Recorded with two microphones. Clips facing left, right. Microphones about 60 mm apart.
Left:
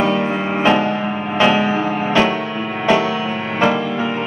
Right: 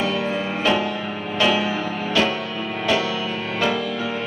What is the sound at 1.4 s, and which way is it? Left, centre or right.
Music, left.